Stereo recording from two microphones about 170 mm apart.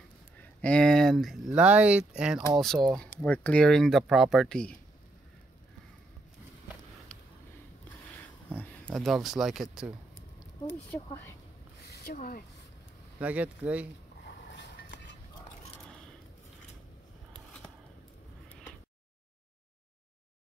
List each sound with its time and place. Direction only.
0.4 s speech: 10° left (ahead or behind)
8.5 s speech: 10° left (ahead or behind)
11.8 s a sound: 65° left (ahead or behind)
13.2 s speech: 10° right (ahead or behind)
14.2 s vehicle: 90° left